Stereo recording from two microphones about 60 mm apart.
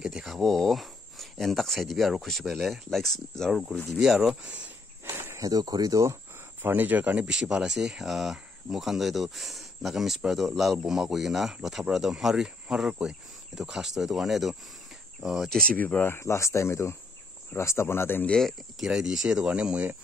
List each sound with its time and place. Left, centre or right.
0.2 s speech: centre
4.0 s speech: centre
4.4 s speech: right
5.1 s cricket: right
5.4 s speech: right
6.6 s speech: right
7.2 s speech: centre
15.5 s speech: centre
16.0 s speech: left
18.8 s speech: centre